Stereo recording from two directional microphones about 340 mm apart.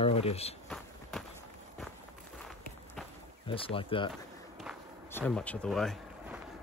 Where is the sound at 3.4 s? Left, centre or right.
Centre.